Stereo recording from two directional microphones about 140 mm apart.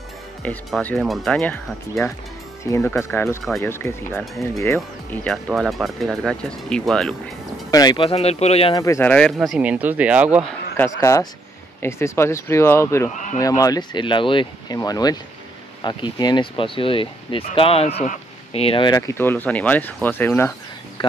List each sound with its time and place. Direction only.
0.7 s speech: centre (ahead or behind)
2.9 s speech: 15° left (ahead or behind)
5.1 s speech: 5° left (ahead or behind)
7.7 s speech: 30° left (ahead or behind)
8.0 s speech: 45° left (ahead or behind)
8.7 s speech: 20° left (ahead or behind)
9.1 s speech: 5° left (ahead or behind)
10.8 s speech: 20° left (ahead or behind); by 18.9 s 45° left (ahead or behind)
18.9 s speech: 25° left (ahead or behind)